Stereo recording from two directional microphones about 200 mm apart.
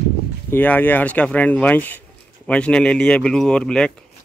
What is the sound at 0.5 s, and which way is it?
Speech, 10° left (ahead or behind).